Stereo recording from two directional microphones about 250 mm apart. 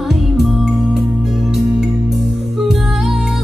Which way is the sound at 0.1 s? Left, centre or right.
Centre.